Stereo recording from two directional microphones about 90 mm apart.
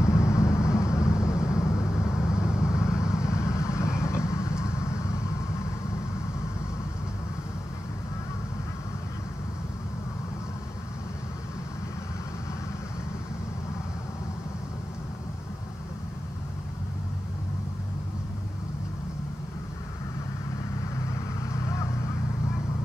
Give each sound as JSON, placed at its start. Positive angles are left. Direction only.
{"t": 0.0, "sound": "vehicle", "side_deg": 35}